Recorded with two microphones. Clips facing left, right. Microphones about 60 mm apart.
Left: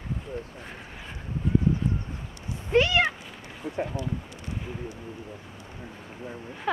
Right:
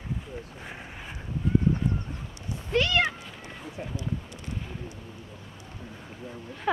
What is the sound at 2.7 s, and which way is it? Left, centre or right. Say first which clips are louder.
Speech: left 3 dB; centre.